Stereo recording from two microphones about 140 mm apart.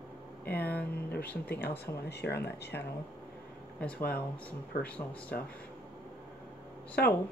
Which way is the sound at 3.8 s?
10° left (ahead or behind).